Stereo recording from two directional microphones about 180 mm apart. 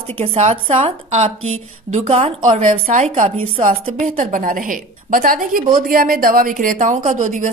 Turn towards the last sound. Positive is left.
turn(degrees=-45)  # may be behind; listen again after turning